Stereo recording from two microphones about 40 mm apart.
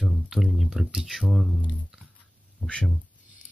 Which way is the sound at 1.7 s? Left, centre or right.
Centre.